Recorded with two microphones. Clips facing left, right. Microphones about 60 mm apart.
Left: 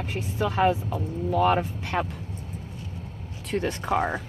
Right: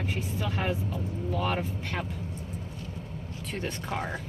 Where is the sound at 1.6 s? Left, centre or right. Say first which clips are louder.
Left 6 dB; left.